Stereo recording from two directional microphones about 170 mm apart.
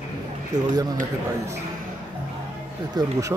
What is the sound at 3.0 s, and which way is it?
Speech, 25° right (ahead or behind).